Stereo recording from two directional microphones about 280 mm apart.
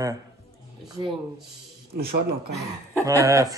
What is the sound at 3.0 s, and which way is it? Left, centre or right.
Speech, centre.